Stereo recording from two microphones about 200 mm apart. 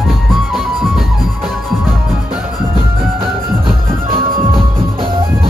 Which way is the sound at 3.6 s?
25° right (ahead or behind).